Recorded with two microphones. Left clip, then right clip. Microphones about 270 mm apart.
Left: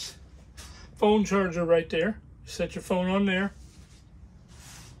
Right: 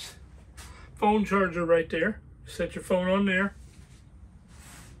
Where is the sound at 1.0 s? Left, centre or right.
Centre.